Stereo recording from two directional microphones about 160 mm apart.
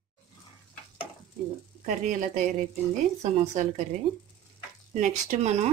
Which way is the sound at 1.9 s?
55° right (ahead or behind).